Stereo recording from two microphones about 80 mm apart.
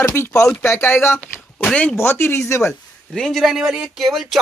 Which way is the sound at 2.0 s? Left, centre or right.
Left.